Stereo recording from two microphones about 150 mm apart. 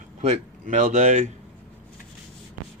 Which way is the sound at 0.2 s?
50° right (ahead or behind).